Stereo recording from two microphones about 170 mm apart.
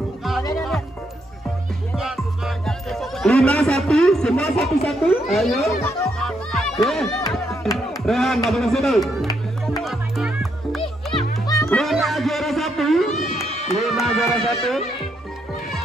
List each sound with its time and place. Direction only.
2.0 s music: centre (ahead or behind)
7.7 s speech: centre (ahead or behind)
9.8 s music: centre (ahead or behind)
11.1 s music: 20° left (ahead or behind)
11.7 s a sound: centre (ahead or behind)
13.3 s run: 40° left (ahead or behind)
13.7 s a sound: centre (ahead or behind)